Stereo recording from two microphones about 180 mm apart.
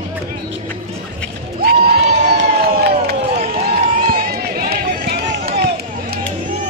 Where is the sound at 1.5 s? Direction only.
55° right (ahead or behind).